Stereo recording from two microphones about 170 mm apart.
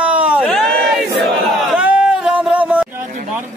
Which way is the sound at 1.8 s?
5° right (ahead or behind).